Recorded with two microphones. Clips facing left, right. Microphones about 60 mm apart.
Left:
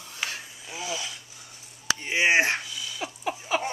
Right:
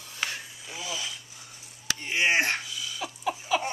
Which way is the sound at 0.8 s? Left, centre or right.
Centre.